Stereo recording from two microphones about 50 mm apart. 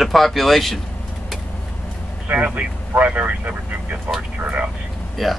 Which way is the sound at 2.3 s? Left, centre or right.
Right.